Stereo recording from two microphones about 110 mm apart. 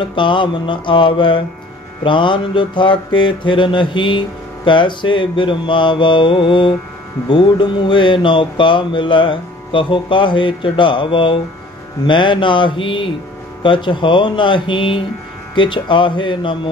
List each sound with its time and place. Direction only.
0.0 s speech: 45° left (ahead or behind)